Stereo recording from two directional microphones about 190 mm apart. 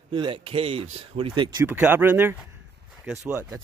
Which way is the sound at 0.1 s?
25° right (ahead or behind).